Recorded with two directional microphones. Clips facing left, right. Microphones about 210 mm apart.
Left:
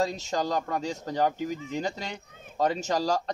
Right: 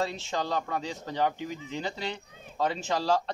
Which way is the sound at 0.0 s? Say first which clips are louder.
Left 3 dB; 40° left (ahead or behind).